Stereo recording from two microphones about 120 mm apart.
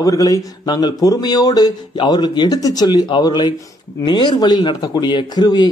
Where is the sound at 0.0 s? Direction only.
30° left (ahead or behind).